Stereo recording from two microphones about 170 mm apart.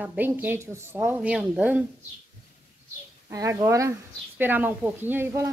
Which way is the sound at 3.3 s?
20° right (ahead or behind).